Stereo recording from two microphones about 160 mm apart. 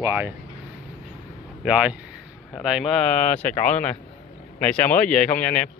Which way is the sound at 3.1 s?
10° left (ahead or behind).